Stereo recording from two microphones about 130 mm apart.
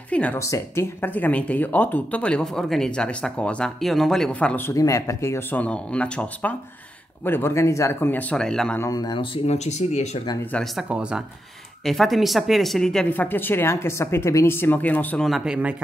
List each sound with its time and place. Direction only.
0.1 s speech: 10° left (ahead or behind)
0.4 s speech: 20° left (ahead or behind); by 8.7 s 5° left (ahead or behind)
8.7 s speech: 25° left (ahead or behind); by 10.2 s 60° left (ahead or behind)
10.4 s speech: 5° left (ahead or behind)
10.9 s speech: 10° right (ahead or behind)
13.1 s speech: 15° left (ahead or behind)
15.2 s speech: 5° right (ahead or behind)